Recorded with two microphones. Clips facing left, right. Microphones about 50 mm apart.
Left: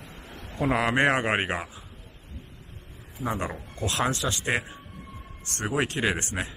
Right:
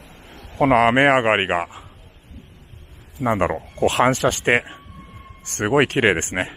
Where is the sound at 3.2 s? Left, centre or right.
Right.